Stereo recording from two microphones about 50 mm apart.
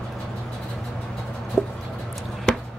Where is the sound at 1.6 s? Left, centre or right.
Left.